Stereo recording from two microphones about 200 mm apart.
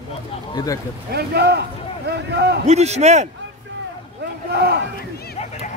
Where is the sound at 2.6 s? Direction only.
35° right (ahead or behind).